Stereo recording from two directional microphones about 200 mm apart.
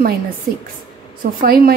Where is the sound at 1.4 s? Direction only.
50° right (ahead or behind).